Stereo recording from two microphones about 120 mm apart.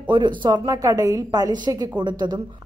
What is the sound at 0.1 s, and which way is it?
A woman's voice, 40° right (ahead or behind).